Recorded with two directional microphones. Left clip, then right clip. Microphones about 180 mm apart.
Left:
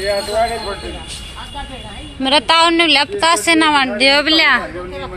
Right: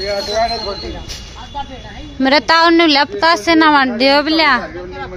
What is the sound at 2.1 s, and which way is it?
Speech, 40° right (ahead or behind).